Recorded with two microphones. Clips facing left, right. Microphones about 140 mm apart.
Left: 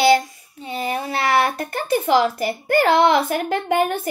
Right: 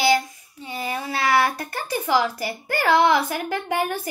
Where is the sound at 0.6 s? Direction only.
55° left (ahead or behind).